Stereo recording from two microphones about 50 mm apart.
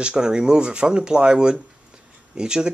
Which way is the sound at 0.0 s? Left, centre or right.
Centre.